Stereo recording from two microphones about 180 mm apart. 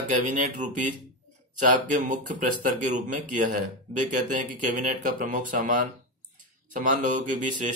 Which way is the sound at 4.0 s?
45° right (ahead or behind).